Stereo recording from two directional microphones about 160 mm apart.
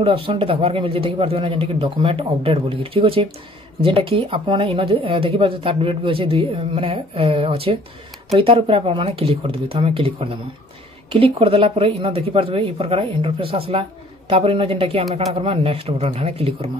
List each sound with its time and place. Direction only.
0.0 s a woman's voice: 35° right (ahead or behind)